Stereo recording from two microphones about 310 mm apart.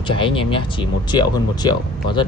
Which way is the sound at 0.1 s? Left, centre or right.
Centre.